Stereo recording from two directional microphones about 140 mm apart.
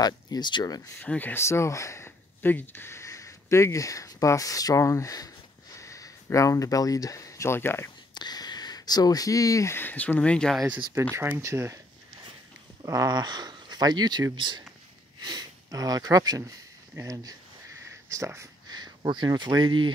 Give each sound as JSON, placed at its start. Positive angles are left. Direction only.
{"t": 0.0, "sound": "speech", "side_deg": 30}
{"t": 1.0, "sound": "speech", "side_deg": 10}
{"t": 8.1, "sound": "speech", "side_deg": 30}
{"t": 11.1, "sound": "speech", "side_deg": -20}
{"t": 12.8, "sound": "speech", "side_deg": -25}